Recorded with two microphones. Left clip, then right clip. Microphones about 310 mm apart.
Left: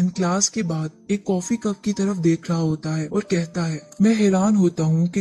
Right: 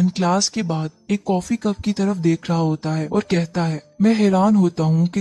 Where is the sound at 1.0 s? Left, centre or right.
Right.